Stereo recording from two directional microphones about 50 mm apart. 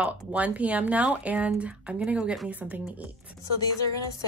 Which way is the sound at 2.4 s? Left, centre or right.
Right.